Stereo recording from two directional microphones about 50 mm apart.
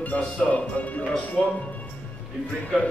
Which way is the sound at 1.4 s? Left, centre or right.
Centre.